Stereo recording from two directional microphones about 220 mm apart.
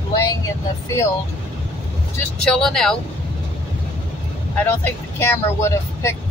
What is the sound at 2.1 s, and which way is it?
Speech, 5° left (ahead or behind).